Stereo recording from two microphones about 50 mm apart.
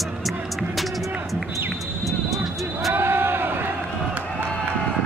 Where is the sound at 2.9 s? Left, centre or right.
Right.